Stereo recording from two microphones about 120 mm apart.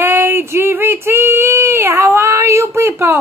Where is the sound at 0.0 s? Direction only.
20° right (ahead or behind).